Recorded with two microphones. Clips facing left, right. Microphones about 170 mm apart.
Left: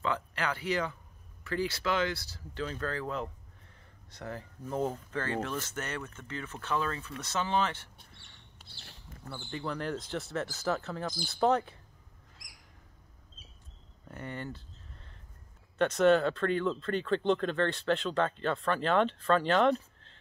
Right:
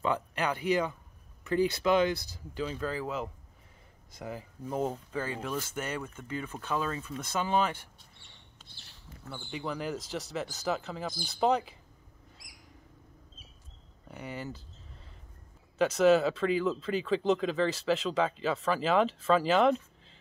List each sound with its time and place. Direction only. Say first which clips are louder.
0.0 s speech: right 3 dB; 20° right (ahead or behind)
9.4 s speech: even; 10° right (ahead or behind)
14.0 s speech: even; 5° right (ahead or behind)
15.8 s speech: right 1 dB; centre (ahead or behind)